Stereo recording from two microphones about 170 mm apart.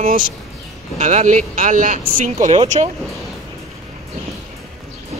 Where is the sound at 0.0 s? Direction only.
55° right (ahead or behind).